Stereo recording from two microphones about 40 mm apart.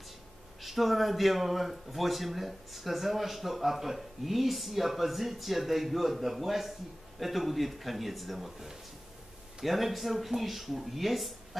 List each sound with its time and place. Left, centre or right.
0.6 s speech: centre